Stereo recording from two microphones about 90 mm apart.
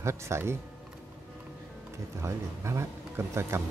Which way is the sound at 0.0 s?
30° right (ahead or behind).